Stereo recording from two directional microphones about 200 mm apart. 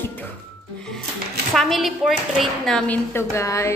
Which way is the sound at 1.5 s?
Centre (ahead or behind).